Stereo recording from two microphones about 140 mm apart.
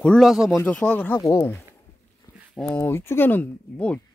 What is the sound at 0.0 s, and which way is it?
Speech, 5° left (ahead or behind).